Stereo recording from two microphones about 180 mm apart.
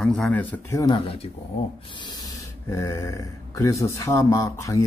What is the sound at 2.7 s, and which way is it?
Speech, 15° left (ahead or behind).